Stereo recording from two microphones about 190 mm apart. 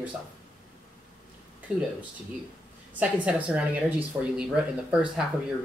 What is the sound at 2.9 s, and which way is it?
Speech, 5° right (ahead or behind).